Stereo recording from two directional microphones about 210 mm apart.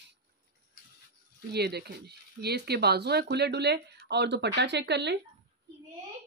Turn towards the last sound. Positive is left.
turn(degrees=-55)  # may be behind; listen again after turning